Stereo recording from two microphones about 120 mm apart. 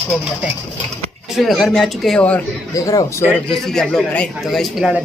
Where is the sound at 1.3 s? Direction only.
Centre (ahead or behind).